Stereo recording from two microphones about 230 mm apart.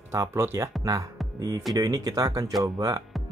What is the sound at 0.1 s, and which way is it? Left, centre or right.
Speech, centre.